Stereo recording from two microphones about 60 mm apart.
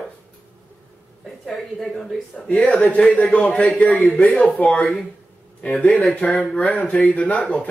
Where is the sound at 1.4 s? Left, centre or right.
Centre.